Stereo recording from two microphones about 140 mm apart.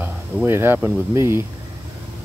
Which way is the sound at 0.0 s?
15° right (ahead or behind).